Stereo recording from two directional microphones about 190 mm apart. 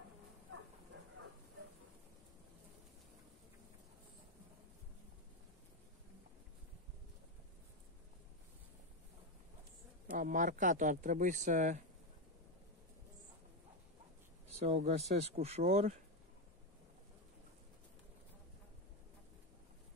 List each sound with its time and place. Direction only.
10.1 s speech: 45° right (ahead or behind)
14.6 s speech: 35° right (ahead or behind)